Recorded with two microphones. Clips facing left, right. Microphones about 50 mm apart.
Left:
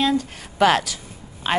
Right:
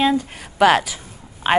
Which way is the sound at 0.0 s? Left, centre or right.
Centre.